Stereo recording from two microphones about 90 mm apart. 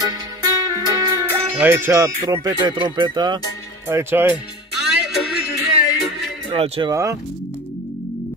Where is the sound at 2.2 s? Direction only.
45° right (ahead or behind).